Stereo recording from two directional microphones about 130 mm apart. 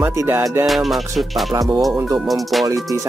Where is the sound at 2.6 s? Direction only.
25° right (ahead or behind).